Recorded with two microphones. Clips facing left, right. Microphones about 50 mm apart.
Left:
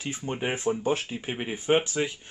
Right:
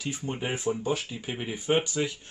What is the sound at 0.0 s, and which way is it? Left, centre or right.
Speech, left.